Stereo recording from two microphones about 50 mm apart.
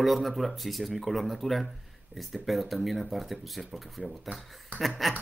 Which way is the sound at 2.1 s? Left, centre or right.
Right.